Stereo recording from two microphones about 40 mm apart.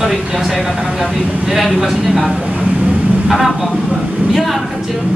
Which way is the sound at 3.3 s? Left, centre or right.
Centre.